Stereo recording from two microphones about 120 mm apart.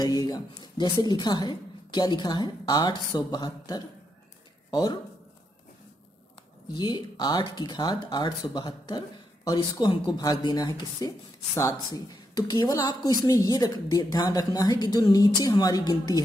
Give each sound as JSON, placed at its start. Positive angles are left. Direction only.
{"t": 0.0, "sound": "a sound", "side_deg": 35}
{"t": 1.0, "sound": "speech", "side_deg": 35}
{"t": 6.8, "sound": "speech", "side_deg": 40}